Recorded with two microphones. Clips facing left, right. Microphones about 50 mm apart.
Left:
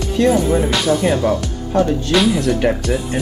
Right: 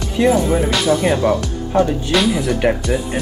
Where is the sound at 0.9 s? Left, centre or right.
Centre.